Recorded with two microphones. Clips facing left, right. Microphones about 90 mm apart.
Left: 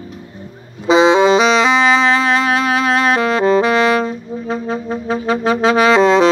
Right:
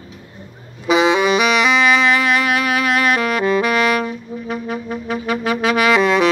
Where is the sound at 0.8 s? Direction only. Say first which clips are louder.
Left 4 dB; 25° left (ahead or behind).